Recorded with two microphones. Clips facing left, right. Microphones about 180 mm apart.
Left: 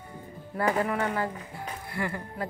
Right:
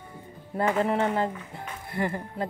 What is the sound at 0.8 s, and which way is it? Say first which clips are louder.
A woman's voice: right 3 dB; 30° right (ahead or behind).